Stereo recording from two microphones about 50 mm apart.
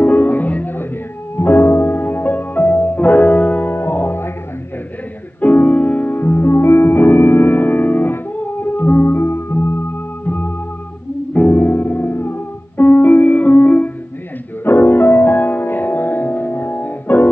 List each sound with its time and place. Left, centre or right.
0.0 s music: left
1.3 s music: left
5.4 s music: left
6.2 s music: left
10.2 s music: left
11.6 s music: left
12.8 s music: left
14.6 s music: left